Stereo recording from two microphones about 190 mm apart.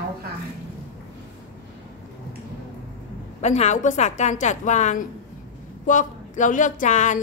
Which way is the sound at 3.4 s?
35° left (ahead or behind).